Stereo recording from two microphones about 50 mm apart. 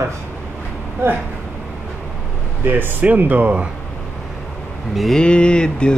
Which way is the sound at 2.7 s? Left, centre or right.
Right.